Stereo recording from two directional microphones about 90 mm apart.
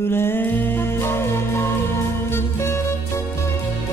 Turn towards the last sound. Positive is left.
turn(degrees=30)  # may be behind; listen again after turning